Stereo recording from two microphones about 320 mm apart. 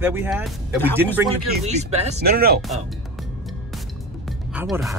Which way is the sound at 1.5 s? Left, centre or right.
Right.